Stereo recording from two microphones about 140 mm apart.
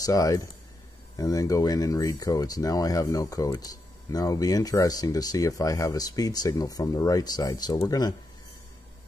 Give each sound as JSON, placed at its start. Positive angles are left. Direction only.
{"t": 0.0, "sound": "speech", "side_deg": 25}